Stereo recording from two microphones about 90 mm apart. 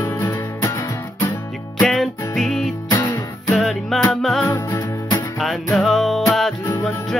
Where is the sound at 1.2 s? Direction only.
20° left (ahead or behind).